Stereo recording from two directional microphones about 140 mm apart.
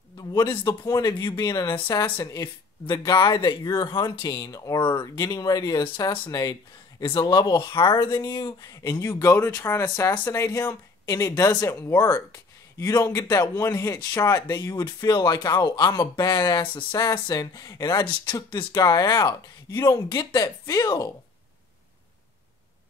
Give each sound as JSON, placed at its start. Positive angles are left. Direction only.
{"t": 0.2, "sound": "speech", "side_deg": 30}